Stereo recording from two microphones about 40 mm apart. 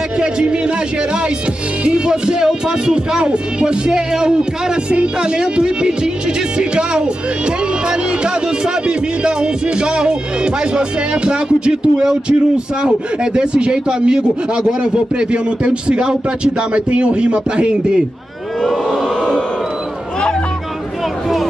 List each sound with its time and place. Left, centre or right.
0.2 s a sound: right
1.9 s music: centre
16.9 s music: right
18.9 s chant: centre